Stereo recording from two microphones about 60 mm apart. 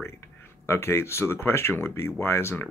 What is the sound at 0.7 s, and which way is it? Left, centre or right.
Speech, left.